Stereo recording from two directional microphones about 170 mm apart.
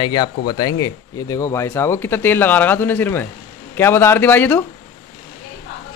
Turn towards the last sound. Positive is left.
turn(degrees=10)  # may be behind; listen again after turning